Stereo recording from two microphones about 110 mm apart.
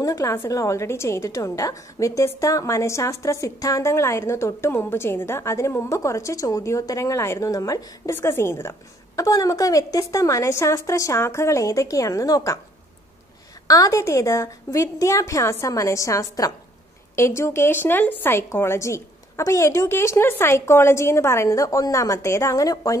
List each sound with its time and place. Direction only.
0.0 s a woman's voice: 30° left (ahead or behind)
13.7 s a woman's voice: 30° left (ahead or behind)